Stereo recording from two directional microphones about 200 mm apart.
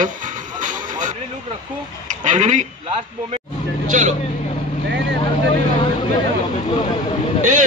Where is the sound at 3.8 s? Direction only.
40° right (ahead or behind).